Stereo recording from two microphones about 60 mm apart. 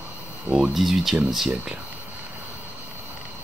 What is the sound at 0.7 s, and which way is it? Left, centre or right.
Speech, centre.